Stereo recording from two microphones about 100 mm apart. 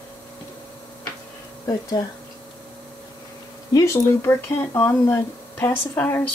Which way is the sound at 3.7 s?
30° left (ahead or behind).